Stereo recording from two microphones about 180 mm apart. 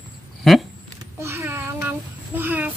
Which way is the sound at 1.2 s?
15° right (ahead or behind).